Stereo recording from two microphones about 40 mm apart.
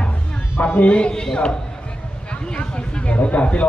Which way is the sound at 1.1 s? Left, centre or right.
Centre.